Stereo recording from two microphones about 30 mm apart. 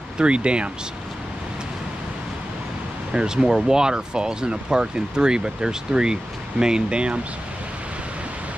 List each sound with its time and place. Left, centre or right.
0.2 s speech: right
3.1 s speech: right